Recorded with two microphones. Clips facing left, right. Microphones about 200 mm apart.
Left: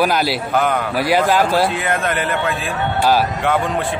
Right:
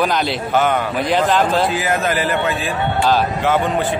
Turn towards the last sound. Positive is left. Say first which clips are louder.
# right 1 dB
turn(degrees=0)  # may be behind; listen again after turning